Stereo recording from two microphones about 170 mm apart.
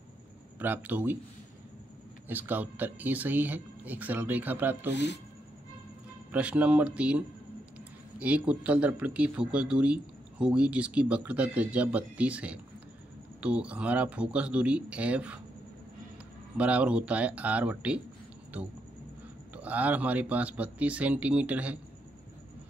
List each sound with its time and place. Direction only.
0.6 s speech: 10° right (ahead or behind)
2.2 s speech: 10° right (ahead or behind)
4.9 s speech: 90° left
6.3 s speech: 5° right (ahead or behind)
16.5 s speech: 5° right (ahead or behind)
19.5 s speech: 10° right (ahead or behind)